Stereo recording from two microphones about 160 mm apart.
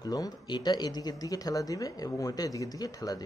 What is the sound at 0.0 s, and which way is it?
A man's voice, 25° left (ahead or behind).